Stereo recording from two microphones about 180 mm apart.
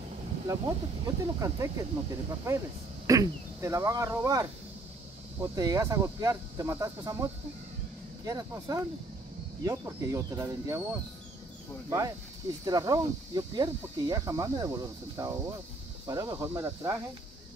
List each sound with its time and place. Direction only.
0.5 s speech: 20° right (ahead or behind)
12.6 s speech: 20° right (ahead or behind)